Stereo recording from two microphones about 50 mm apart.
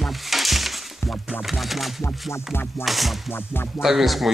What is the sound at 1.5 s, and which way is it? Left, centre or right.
Speech, centre.